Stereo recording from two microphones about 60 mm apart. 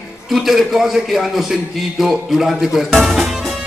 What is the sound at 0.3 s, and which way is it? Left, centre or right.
A man's voice, centre.